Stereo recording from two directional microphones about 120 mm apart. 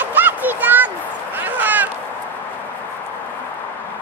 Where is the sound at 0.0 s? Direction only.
15° right (ahead or behind).